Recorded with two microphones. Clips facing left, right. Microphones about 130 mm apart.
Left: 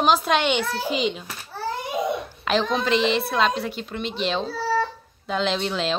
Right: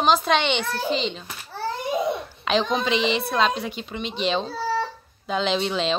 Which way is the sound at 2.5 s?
Centre (ahead or behind).